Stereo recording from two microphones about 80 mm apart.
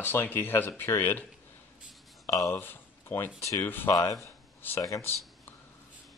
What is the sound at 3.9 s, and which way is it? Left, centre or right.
Speech, left.